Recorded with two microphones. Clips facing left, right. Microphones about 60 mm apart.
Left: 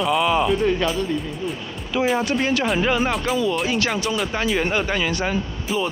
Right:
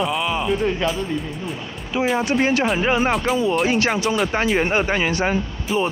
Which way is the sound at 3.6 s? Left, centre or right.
Right.